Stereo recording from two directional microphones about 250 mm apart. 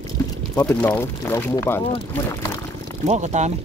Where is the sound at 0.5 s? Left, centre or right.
Centre.